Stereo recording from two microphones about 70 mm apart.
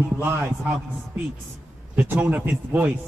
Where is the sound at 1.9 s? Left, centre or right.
Right.